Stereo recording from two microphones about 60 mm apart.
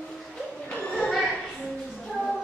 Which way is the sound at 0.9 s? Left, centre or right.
Centre.